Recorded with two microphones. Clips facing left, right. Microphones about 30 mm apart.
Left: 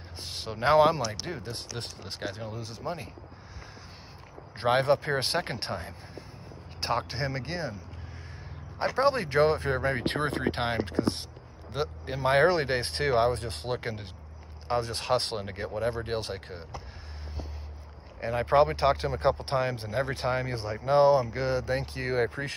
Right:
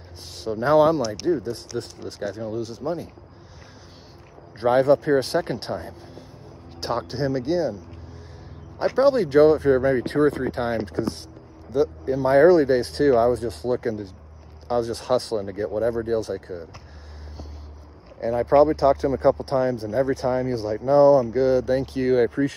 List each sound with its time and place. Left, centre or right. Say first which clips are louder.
0.2 s speech: right 4 dB; left
2.2 s speech: right 8 dB; left
4.6 s speech: right 6 dB; left
6.8 s speech: right 4 dB; left
7.3 s speech: right 11 dB; centre
8.8 s speech: right 7 dB; centre
9.3 s speech: right 9 dB; left
10.0 s speech: right 7 dB; left
10.7 s speech: right 3 dB; left
11.7 s speech: right 10 dB; left
18.3 s speech: right 6 dB; left
21.5 s speech: right 8 dB; centre